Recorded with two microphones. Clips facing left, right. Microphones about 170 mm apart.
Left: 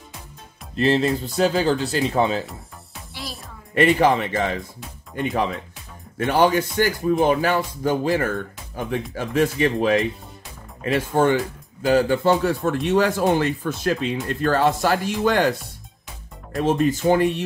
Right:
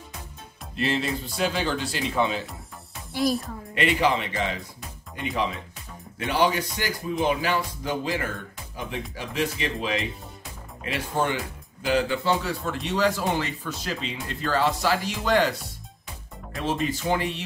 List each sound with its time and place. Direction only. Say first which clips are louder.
0.7 s speech: left 7 dB; 40° left (ahead or behind)
3.7 s a man's voice: left 6 dB; 45° left (ahead or behind)
16.5 s a man's voice: left 7 dB; 50° left (ahead or behind)